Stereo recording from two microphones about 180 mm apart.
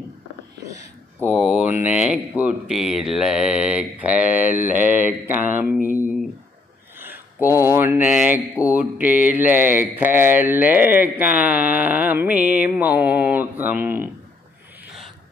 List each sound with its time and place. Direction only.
1.2 s speech: 5° right (ahead or behind)